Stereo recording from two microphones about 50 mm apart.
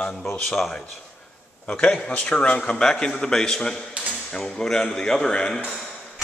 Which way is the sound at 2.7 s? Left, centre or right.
Centre.